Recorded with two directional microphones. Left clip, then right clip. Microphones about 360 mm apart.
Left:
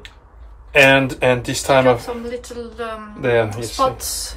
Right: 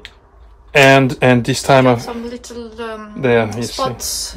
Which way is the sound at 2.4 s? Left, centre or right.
Centre.